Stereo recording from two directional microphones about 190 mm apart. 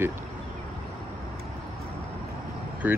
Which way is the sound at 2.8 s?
10° right (ahead or behind).